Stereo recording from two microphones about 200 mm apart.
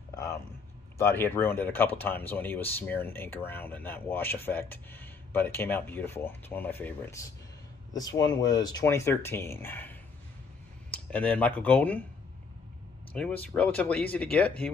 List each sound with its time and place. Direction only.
0.1 s a sound: 15° left (ahead or behind)
0.9 s speech: 10° left (ahead or behind)
11.1 s speech: 5° left (ahead or behind)
13.1 s speech: 5° left (ahead or behind)